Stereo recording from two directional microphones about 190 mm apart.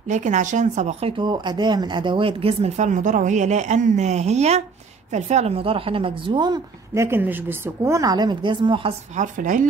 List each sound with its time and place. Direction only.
0.1 s a woman's voice: 40° right (ahead or behind)
9.1 s speech: 40° right (ahead or behind)